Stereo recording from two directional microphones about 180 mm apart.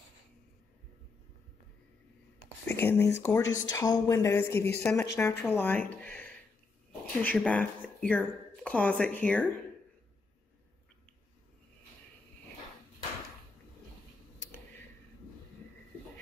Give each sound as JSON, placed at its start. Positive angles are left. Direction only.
{"t": 2.7, "sound": "speech", "side_deg": 15}
{"t": 3.4, "sound": "speech", "side_deg": 90}
{"t": 3.7, "sound": "speech", "side_deg": 20}